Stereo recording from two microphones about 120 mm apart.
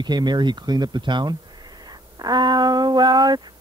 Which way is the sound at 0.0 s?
35° right (ahead or behind).